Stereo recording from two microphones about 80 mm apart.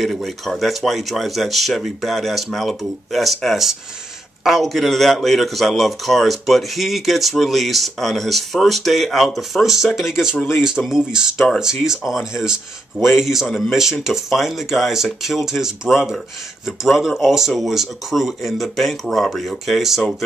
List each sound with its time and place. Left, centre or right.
0.0 s a man's voice: centre